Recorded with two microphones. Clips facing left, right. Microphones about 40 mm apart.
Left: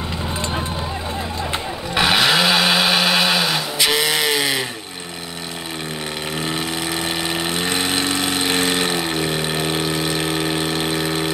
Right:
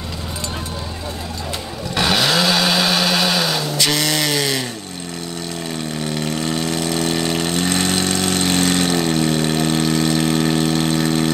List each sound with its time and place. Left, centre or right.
2.0 s vehicle: centre
6.3 s engine: centre